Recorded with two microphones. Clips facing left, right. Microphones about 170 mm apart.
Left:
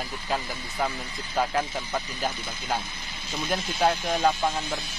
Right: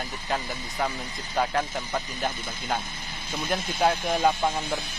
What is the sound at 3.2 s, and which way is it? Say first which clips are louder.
Speech: even; 55° right (ahead or behind).